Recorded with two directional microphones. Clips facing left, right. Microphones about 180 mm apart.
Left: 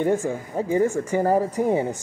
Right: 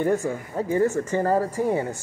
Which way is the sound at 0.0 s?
20° left (ahead or behind).